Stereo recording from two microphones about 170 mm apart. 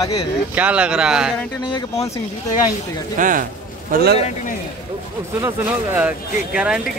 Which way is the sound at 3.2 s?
50° right (ahead or behind).